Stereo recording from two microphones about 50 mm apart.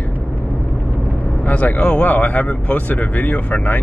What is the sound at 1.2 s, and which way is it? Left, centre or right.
Speech, left.